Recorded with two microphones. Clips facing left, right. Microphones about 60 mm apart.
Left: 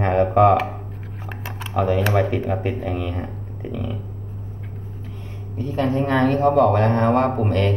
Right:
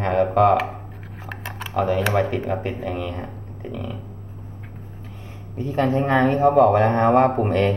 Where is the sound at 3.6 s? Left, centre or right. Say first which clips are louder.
Left 2 dB; centre.